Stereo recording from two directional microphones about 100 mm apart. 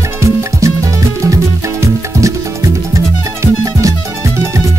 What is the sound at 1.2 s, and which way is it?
Music, 35° right (ahead or behind).